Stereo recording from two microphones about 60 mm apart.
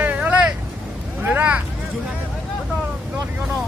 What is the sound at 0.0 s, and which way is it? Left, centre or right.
Vehicle, right.